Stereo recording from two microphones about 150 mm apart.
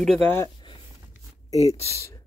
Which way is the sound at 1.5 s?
45° left (ahead or behind).